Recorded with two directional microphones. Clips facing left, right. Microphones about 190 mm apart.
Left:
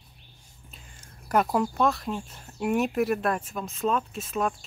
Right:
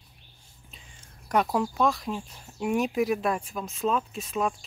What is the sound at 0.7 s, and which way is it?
Speech, centre (ahead or behind).